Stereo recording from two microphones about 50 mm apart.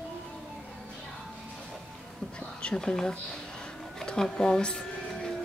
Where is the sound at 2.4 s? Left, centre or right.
Centre.